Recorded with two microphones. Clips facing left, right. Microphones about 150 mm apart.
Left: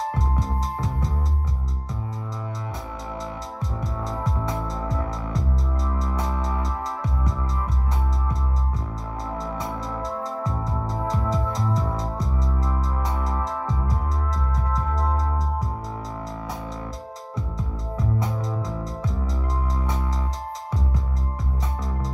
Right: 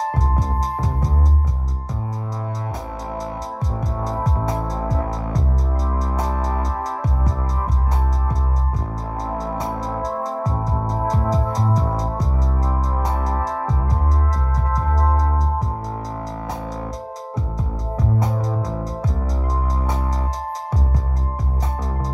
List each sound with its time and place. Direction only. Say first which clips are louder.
4.1 s music: right 5 dB; 40° right (ahead or behind)
9.3 s music: right 5 dB; 40° right (ahead or behind)
17.9 s music: right 4 dB; 40° right (ahead or behind)